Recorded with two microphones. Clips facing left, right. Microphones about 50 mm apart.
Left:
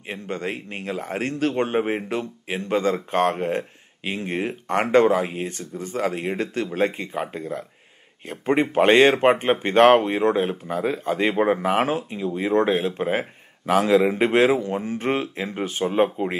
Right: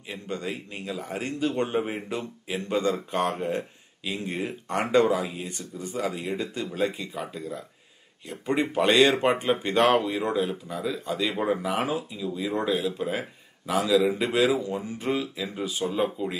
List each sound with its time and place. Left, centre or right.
0.1 s speech: left